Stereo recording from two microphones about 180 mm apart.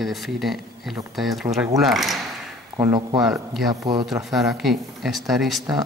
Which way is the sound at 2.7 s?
25° right (ahead or behind).